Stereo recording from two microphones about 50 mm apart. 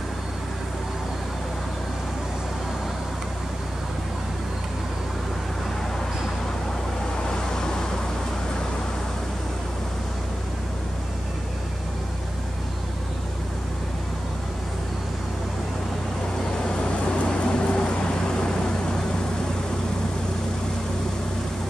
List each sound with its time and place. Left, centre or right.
7.2 s vehicle: centre
16.6 s vehicle: centre